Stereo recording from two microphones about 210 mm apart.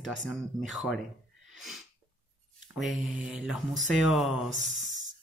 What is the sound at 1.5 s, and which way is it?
Sneeze, centre (ahead or behind).